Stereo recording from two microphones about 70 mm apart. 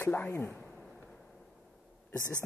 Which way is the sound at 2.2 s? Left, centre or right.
Right.